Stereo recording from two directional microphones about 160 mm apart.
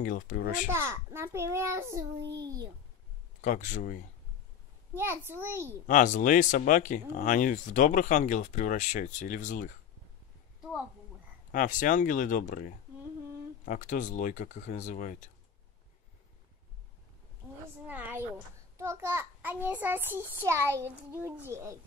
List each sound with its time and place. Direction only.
0.0 s speech: 60° left (ahead or behind)
0.7 s a child's voice: 15° right (ahead or behind)
3.3 s speech: 50° left (ahead or behind)
4.9 s a child's voice: 15° right (ahead or behind)
5.9 s speech: 50° left (ahead or behind)
11.5 s speech: 55° left (ahead or behind)
17.8 s a child's voice: 10° right (ahead or behind)